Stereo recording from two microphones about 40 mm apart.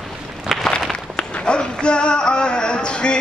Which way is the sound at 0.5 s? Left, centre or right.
Centre.